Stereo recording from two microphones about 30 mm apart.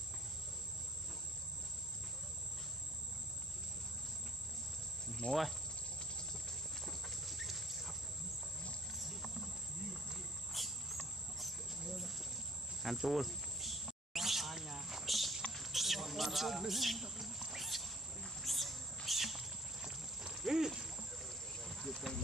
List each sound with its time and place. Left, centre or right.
5.2 s speech: left
6.8 s clip-clop: centre
8.9 s horse: centre
10.0 s cricket: centre
11.3 s a sound: centre
12.8 s speech: centre
13.6 s a sound: centre
19.0 s cricket: centre
20.3 s a sound: centre
21.6 s cricket: centre